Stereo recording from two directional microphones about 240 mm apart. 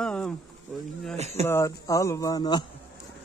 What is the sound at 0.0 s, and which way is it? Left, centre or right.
Insect, centre.